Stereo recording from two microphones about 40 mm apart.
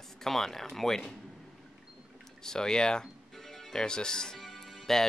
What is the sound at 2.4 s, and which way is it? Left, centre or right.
Speech, centre.